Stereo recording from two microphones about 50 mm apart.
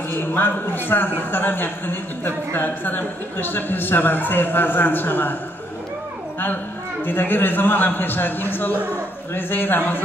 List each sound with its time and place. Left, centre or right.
0.1 s a woman's voice: left
7.1 s a woman's voice: left